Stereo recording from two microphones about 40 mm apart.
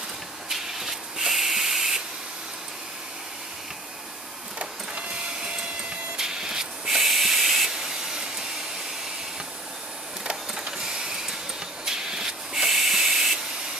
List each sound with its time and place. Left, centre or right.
0.5 s spray: centre
6.1 s hiss: centre
10.8 s vehicle: centre
11.8 s hiss: centre